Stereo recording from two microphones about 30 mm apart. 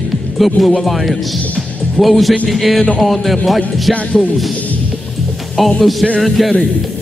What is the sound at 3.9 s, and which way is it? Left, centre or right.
Music, left.